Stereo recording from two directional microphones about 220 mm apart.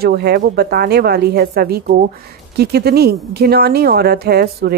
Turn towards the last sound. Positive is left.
turn(degrees=-45)  # may be behind; listen again after turning